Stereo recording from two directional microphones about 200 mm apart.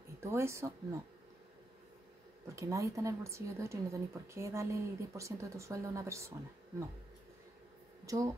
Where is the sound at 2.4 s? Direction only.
15° right (ahead or behind).